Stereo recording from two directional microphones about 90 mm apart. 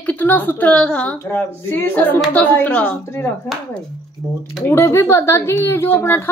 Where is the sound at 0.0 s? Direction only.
20° left (ahead or behind).